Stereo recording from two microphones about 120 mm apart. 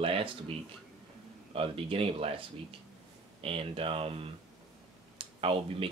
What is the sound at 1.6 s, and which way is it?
Speech, 50° right (ahead or behind).